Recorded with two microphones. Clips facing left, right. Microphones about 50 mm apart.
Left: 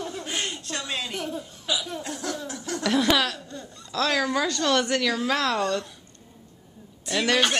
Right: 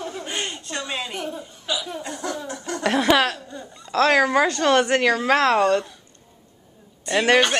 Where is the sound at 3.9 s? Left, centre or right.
Right.